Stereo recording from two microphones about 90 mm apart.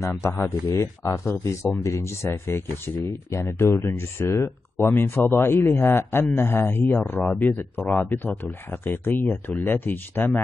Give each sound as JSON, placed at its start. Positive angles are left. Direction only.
{"t": 0.0, "sound": "speech", "side_deg": 30}